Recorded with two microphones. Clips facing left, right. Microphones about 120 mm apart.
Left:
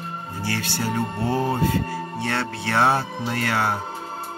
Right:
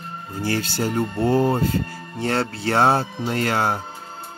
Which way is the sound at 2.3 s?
30° right (ahead or behind).